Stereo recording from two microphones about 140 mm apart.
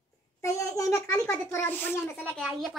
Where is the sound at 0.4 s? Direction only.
20° left (ahead or behind).